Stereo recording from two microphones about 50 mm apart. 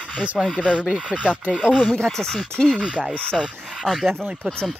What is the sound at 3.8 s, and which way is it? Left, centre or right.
Speech, centre.